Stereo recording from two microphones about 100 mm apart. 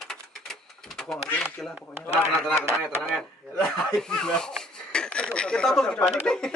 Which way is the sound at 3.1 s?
10° left (ahead or behind).